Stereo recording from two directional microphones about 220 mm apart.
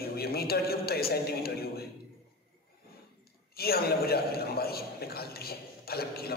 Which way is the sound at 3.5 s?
45° left (ahead or behind).